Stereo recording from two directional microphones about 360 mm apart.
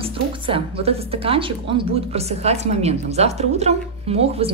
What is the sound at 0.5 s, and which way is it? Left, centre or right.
A woman's voice, centre.